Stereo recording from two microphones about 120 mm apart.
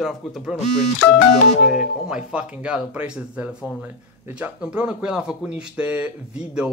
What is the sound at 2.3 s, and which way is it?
Speech, 10° right (ahead or behind).